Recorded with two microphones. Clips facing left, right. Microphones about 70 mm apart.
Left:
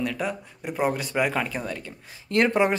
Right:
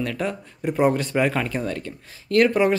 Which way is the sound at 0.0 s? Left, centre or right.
Centre.